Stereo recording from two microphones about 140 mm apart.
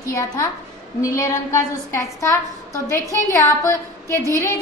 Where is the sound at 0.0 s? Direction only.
25° left (ahead or behind).